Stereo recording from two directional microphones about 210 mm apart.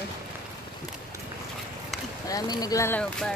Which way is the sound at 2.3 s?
20° left (ahead or behind).